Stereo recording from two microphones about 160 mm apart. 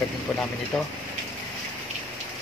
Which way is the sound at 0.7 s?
5° left (ahead or behind).